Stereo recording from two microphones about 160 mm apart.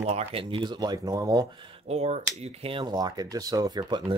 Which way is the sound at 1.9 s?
45° right (ahead or behind).